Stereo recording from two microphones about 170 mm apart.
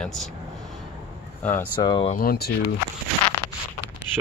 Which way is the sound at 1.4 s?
10° left (ahead or behind).